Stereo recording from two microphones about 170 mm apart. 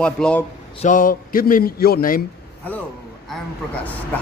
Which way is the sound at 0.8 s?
50° left (ahead or behind).